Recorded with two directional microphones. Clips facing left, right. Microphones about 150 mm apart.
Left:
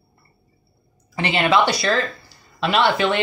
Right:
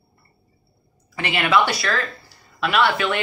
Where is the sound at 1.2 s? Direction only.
30° left (ahead or behind).